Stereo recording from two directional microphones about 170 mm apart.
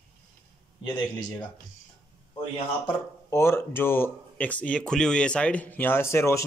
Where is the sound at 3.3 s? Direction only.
15° left (ahead or behind).